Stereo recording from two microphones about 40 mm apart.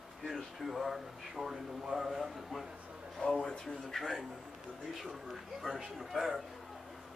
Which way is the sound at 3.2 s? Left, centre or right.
Left.